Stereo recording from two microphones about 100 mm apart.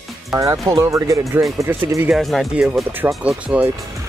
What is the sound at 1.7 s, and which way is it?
Speech, 20° right (ahead or behind).